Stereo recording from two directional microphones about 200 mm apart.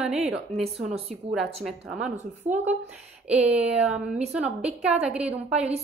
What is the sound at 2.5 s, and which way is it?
Speech, 35° right (ahead or behind).